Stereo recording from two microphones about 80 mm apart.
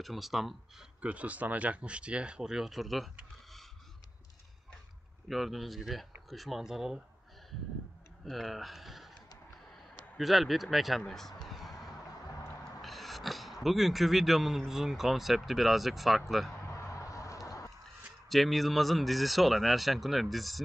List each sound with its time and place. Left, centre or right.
0.0 s speech: centre
1.0 s speech: centre
5.3 s speech: centre
8.3 s speech: centre
10.1 s speech: centre
11.4 s vehicle: centre
12.8 s speech: centre
16.8 s a sound: left
18.3 s speech: centre